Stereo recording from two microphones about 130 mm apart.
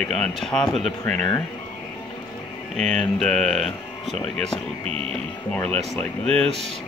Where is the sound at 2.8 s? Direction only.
5° left (ahead or behind).